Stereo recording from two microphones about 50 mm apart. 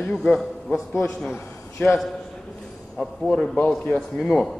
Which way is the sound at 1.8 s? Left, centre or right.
Left.